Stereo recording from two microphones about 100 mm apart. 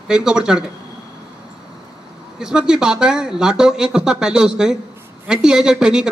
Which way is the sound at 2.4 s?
5° right (ahead or behind).